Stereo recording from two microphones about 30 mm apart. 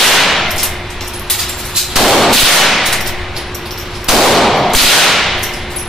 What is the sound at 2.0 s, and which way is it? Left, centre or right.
Gunshot, centre.